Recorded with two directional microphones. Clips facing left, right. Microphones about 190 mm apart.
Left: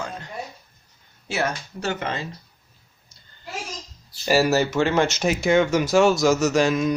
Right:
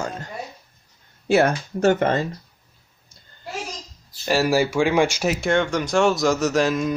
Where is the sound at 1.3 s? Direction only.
50° right (ahead or behind).